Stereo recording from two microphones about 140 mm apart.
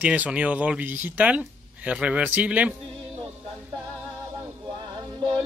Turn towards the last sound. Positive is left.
turn(degrees=-30)  # may be behind; listen again after turning